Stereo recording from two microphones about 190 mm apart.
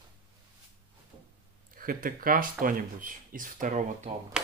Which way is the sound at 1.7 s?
50° right (ahead or behind).